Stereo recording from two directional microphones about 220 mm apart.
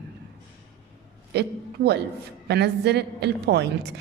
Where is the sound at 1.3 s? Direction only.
50° right (ahead or behind).